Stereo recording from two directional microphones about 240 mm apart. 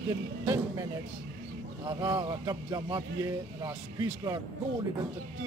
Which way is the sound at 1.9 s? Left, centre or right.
Centre.